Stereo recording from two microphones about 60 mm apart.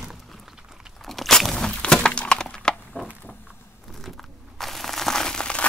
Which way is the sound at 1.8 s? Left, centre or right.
Centre.